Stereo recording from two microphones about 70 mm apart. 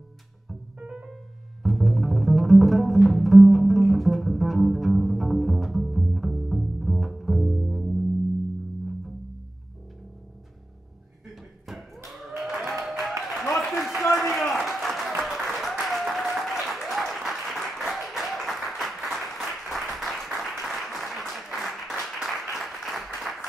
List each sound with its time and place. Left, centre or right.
0.7 s music: centre
1.6 s music: centre
11.6 s a sound: centre
12.8 s applause: centre
13.6 s a sound: centre
15.5 s applause: centre